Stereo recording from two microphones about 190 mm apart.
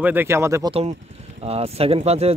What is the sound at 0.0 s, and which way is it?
Speech, 10° right (ahead or behind).